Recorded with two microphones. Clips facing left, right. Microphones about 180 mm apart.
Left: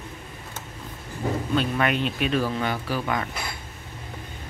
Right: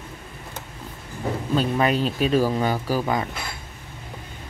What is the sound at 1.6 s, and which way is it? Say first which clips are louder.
Speech: right 4 dB; 35° right (ahead or behind).